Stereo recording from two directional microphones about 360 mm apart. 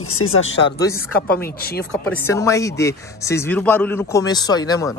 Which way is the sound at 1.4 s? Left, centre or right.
Left.